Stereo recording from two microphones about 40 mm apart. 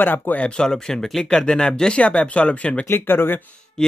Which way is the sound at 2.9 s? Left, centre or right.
Left.